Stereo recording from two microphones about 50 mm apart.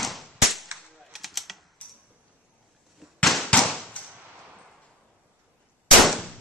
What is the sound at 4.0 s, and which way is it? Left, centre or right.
Firecracker, left.